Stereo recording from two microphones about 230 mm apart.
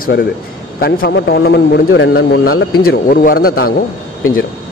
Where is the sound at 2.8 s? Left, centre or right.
Left.